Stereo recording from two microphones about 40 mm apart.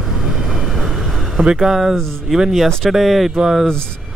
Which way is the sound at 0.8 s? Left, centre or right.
Centre.